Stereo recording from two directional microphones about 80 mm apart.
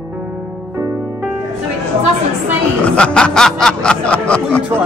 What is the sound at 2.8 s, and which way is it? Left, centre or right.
Snicker, centre.